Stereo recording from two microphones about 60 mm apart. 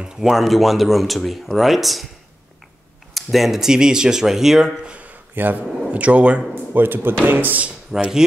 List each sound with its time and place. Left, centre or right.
0.0 s speech: centre
3.2 s speech: centre
4.8 s a sound: right
5.3 s speech: right
5.9 s speech: right
6.5 s speech: right
7.9 s speech: centre